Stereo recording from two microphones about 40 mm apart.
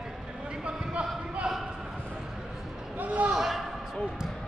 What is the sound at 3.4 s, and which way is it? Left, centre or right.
Slam, centre.